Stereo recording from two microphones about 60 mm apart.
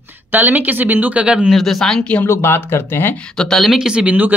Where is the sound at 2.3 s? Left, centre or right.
Left.